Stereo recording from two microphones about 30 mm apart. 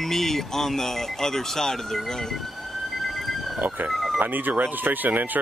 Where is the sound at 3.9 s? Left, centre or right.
Centre.